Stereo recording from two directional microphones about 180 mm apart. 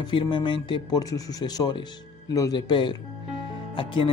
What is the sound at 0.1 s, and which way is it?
Speech, 25° left (ahead or behind).